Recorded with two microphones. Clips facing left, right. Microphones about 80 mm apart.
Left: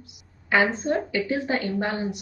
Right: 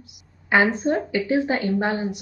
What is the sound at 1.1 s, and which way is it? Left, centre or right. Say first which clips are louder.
A woman's voice: right 4 dB; centre.